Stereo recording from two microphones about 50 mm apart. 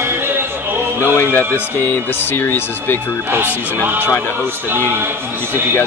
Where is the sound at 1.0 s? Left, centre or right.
Left.